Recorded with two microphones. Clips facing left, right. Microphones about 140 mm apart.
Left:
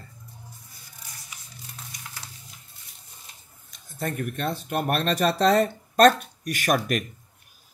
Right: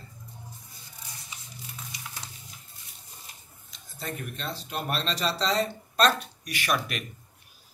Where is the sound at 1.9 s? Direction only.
50° left (ahead or behind).